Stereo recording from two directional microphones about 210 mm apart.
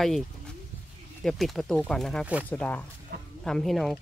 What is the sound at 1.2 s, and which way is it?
Speech, centre (ahead or behind).